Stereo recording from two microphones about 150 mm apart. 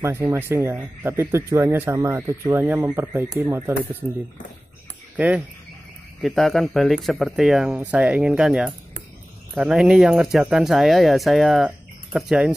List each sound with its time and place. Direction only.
0.0 s speech: 15° right (ahead or behind)
5.1 s speech: 10° right (ahead or behind)